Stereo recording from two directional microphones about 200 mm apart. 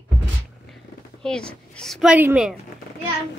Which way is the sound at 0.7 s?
5° left (ahead or behind).